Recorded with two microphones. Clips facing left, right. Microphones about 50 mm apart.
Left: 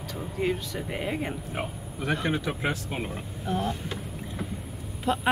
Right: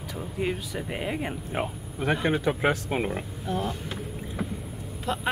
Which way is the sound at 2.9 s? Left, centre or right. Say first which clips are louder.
Right 5 dB; right.